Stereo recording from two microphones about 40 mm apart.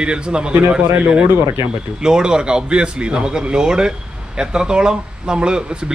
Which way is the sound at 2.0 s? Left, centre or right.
Centre.